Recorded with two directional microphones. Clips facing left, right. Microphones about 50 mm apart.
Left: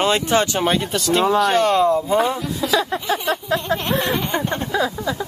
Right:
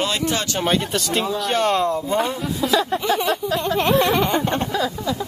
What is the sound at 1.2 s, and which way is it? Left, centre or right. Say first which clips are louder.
Speech: left 8 dB; left.